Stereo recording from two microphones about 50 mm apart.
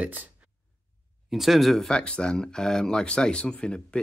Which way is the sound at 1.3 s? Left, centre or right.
Centre.